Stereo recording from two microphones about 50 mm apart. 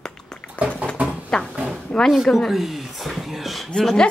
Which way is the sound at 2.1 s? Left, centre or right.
Centre.